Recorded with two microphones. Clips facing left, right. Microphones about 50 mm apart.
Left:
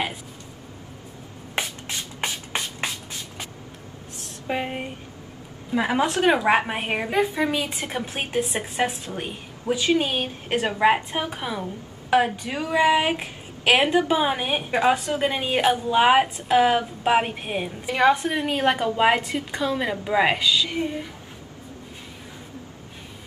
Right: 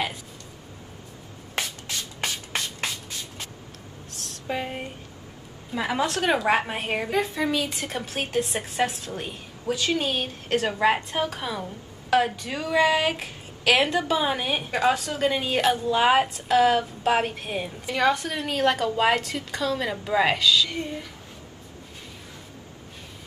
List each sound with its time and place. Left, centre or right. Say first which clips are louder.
1.6 s music: left 2 dB; centre
4.5 s a sound: left 3 dB; centre
5.7 s a woman's voice: left 3 dB; centre